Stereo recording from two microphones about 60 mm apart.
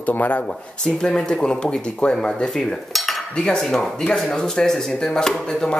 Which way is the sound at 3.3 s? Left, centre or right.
Centre.